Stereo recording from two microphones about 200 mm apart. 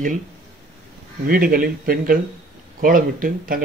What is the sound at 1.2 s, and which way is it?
Speech, 45° right (ahead or behind).